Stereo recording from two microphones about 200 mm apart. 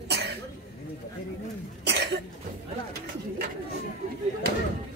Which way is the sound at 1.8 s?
60° right (ahead or behind).